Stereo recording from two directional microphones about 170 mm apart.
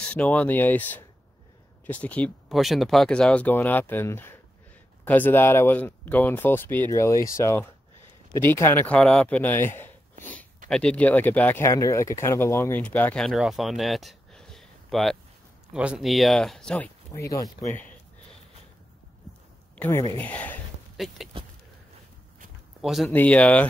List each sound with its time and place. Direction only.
0.1 s speech: 5° left (ahead or behind)
17.1 s speech: 20° left (ahead or behind)
19.8 s speech: 20° left (ahead or behind)
20.9 s speech: centre (ahead or behind)
22.8 s speech: centre (ahead or behind)